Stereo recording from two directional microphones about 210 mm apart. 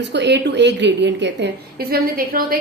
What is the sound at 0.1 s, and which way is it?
A woman's voice, 55° right (ahead or behind).